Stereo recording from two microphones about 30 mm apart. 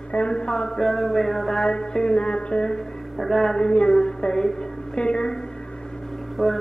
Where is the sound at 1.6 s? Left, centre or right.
Left.